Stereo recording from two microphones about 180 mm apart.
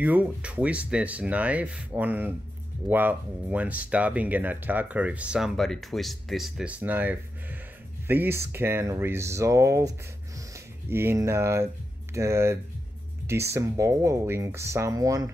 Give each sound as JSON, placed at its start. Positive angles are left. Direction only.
{"t": 0.0, "sound": "speech", "side_deg": -10}